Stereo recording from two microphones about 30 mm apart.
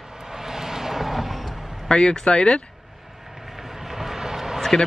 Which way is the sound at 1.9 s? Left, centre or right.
Left.